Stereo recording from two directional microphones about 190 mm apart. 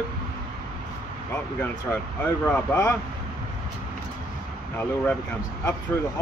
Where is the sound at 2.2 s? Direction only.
10° left (ahead or behind).